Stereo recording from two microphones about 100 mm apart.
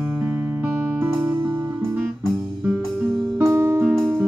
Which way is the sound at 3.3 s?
25° right (ahead or behind).